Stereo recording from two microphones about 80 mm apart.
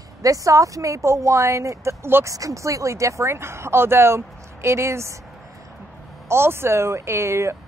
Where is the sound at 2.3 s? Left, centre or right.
Right.